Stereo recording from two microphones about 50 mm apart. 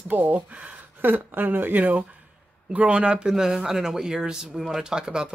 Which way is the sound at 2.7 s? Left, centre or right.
Right.